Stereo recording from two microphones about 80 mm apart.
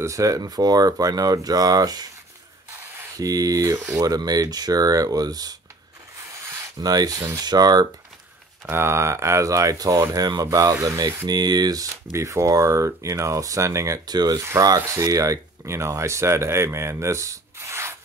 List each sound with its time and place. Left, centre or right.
0.0 s speech: right
3.2 s speech: right
6.8 s speech: right
8.6 s speech: right
11.2 s speech: right
14.1 s speech: right
14.9 s speech: right